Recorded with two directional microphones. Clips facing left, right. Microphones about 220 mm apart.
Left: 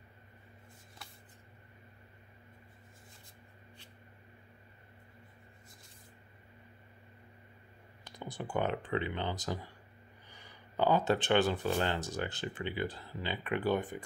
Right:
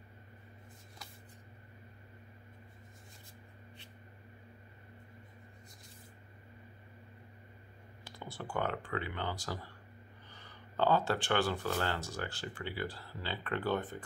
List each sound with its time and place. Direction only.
8.2 s speech: 15° left (ahead or behind)